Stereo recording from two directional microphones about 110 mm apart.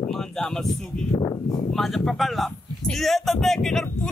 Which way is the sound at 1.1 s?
45° left (ahead or behind).